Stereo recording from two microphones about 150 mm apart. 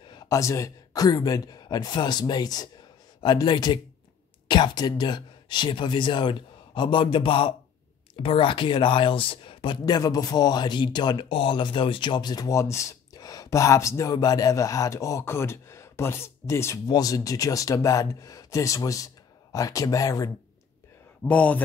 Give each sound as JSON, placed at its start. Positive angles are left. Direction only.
{"t": 0.0, "sound": "speech", "side_deg": 25}
{"t": 21.2, "sound": "a man's voice", "side_deg": 10}